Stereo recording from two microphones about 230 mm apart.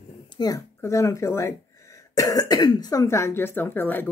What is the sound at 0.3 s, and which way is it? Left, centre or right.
Speech, centre.